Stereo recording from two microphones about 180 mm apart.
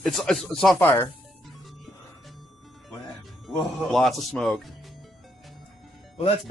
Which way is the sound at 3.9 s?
Centre (ahead or behind).